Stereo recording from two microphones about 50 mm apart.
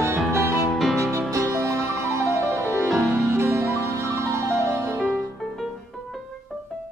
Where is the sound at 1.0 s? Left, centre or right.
Right.